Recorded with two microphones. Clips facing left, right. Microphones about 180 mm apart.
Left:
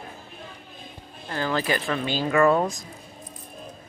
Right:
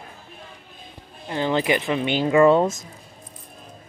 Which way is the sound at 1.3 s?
20° right (ahead or behind).